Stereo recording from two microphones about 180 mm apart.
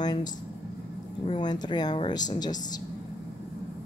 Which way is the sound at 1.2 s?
25° left (ahead or behind).